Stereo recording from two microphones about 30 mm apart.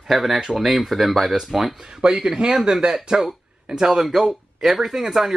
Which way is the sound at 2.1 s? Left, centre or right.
Centre.